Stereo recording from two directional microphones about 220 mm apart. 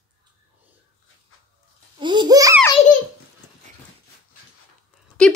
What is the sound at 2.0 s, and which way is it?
Babbling, 20° right (ahead or behind).